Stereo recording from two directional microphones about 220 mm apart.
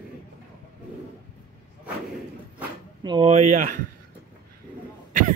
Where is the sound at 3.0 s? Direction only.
20° right (ahead or behind).